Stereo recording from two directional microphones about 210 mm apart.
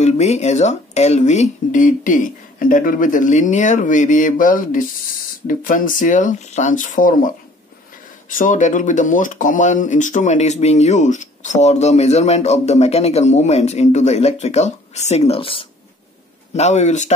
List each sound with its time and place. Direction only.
0.0 s speech: 30° left (ahead or behind)